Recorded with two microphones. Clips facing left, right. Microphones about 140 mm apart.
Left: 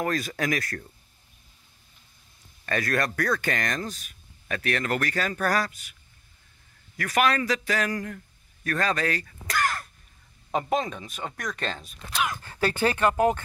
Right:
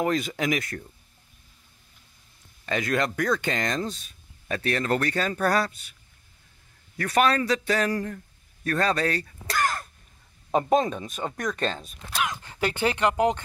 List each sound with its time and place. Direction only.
0.0 s speech: 20° right (ahead or behind)
2.6 s speech: 20° right (ahead or behind)
7.0 s speech: 30° right (ahead or behind)
9.5 s a sound: 20° right (ahead or behind)
10.5 s speech: 25° right (ahead or behind)